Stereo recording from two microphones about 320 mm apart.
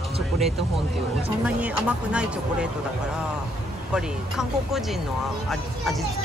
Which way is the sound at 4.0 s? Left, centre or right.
Centre.